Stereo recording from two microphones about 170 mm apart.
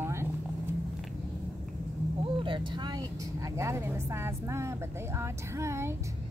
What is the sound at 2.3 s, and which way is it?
Speech, 30° right (ahead or behind).